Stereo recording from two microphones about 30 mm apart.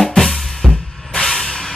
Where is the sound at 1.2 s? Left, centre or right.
Centre.